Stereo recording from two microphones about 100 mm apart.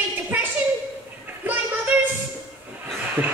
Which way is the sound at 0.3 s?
15° right (ahead or behind).